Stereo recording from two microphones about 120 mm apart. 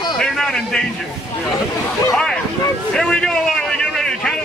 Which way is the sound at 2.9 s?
5° left (ahead or behind).